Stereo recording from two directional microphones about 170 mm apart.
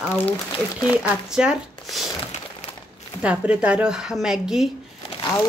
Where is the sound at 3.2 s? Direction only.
5° right (ahead or behind).